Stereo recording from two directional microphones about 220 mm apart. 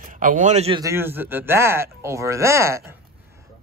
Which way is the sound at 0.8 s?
10° right (ahead or behind).